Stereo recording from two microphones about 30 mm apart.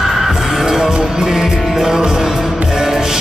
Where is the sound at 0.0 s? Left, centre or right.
Centre.